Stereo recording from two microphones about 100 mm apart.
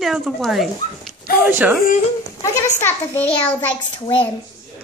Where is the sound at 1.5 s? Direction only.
20° right (ahead or behind).